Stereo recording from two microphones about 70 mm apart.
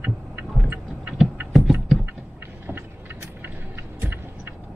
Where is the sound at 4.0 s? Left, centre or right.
Right.